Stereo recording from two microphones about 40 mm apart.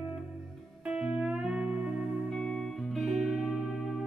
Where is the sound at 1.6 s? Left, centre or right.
Right.